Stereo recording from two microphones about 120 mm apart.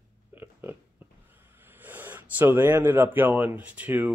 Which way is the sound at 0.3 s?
15° right (ahead or behind).